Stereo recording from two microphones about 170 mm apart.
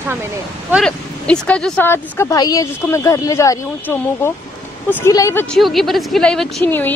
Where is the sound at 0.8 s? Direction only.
5° left (ahead or behind).